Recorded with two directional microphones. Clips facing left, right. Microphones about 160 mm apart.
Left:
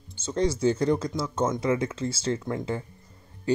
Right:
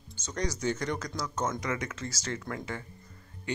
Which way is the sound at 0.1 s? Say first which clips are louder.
Left 8 dB; 30° left (ahead or behind).